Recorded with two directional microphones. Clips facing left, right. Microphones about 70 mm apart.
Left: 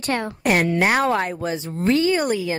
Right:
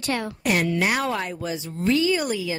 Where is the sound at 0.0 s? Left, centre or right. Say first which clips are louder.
Left 3 dB; left.